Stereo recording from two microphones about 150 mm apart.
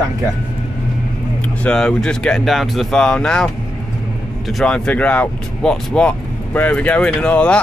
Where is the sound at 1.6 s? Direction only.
5° left (ahead or behind).